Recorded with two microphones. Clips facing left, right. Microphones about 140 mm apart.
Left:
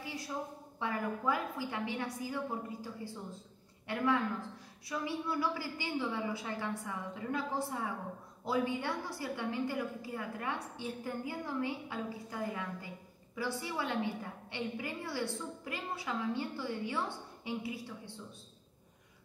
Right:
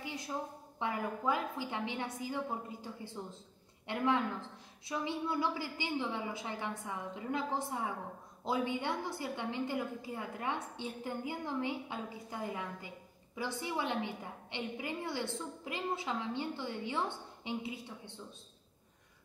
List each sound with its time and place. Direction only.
0.0 s a woman's voice: 20° right (ahead or behind)